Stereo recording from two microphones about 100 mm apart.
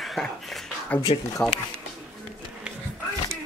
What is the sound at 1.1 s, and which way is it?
Speech, 70° left (ahead or behind).